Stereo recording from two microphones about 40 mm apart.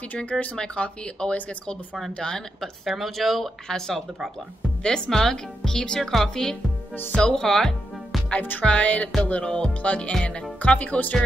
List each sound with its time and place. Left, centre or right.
0.1 s speech: left
0.6 s speech: left
2.6 s speech: centre
3.6 s speech: centre
8.4 s speech: left
8.6 s speech: left
9.4 s speech: left